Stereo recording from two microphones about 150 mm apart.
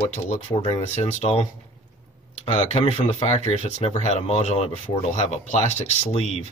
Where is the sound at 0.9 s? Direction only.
45° left (ahead or behind).